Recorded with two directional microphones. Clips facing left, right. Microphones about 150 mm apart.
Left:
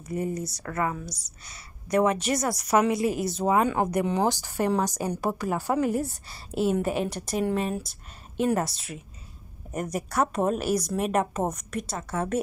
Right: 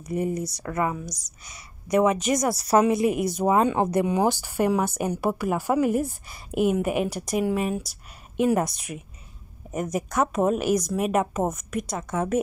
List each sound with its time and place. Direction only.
0.0 s a woman's voice: 20° right (ahead or behind)
2.5 s speech: 35° right (ahead or behind)
2.8 s a woman's voice: 20° right (ahead or behind)
10.1 s a woman's voice: 5° right (ahead or behind)